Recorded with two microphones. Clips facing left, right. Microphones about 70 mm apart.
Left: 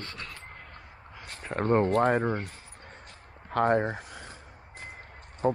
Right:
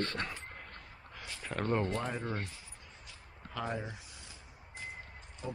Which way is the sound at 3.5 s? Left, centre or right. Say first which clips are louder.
Left 14 dB; left.